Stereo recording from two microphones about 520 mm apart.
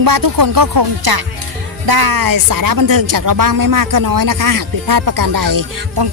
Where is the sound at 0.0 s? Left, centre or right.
Right.